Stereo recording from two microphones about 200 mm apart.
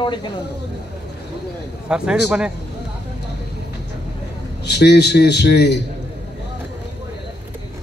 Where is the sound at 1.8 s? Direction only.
5° right (ahead or behind).